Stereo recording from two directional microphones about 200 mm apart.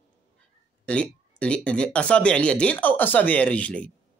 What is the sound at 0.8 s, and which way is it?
Speech, 5° left (ahead or behind).